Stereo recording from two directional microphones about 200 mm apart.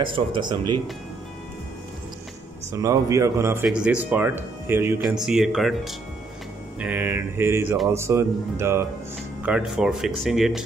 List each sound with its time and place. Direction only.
0.0 s speech: 25° right (ahead or behind)
2.7 s speech: 15° right (ahead or behind)